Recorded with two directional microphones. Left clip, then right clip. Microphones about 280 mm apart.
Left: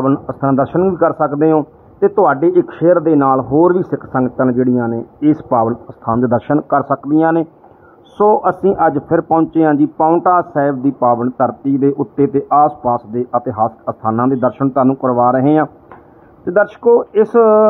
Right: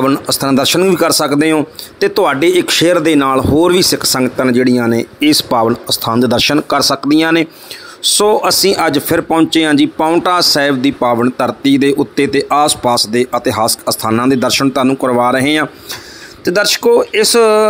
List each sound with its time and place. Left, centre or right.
0.0 s speech: right